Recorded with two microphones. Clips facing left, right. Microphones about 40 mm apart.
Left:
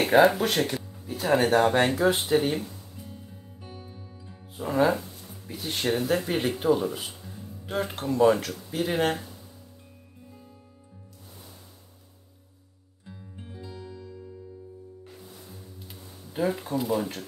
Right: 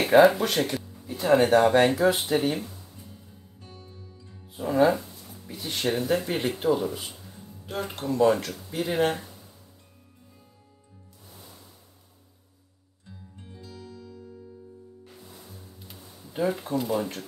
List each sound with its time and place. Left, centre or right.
0.0 s speech: centre
3.6 s music: left
4.6 s speech: centre
6.0 s speech: centre
13.0 s music: centre
15.9 s speech: centre